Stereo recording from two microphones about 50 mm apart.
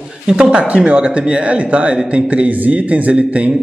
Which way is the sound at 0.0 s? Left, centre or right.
Centre.